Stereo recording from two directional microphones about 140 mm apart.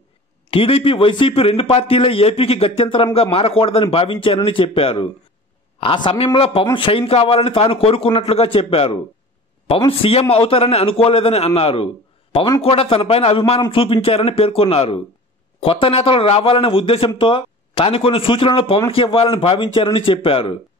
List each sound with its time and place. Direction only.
0.5 s a man's voice: 40° left (ahead or behind)